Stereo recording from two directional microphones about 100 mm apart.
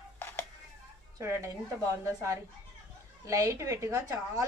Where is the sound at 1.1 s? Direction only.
30° right (ahead or behind).